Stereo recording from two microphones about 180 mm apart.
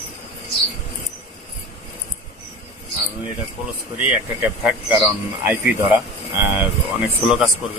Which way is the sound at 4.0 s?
10° right (ahead or behind).